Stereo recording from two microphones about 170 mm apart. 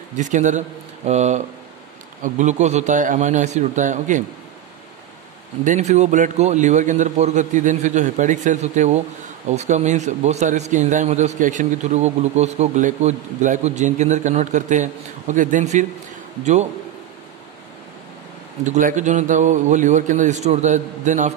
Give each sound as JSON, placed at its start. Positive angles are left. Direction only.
{"t": 0.2, "sound": "a man's voice", "side_deg": -45}
{"t": 5.6, "sound": "a man's voice", "side_deg": -45}
{"t": 18.7, "sound": "a man's voice", "side_deg": -50}